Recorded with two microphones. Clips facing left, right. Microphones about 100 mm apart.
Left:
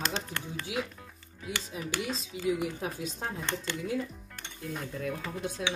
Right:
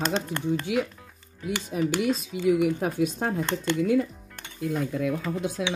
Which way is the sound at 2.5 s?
60° right (ahead or behind).